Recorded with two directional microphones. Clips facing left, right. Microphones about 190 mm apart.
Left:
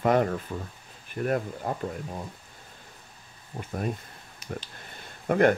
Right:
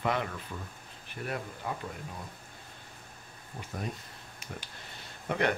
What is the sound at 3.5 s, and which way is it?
Speech, 50° left (ahead or behind).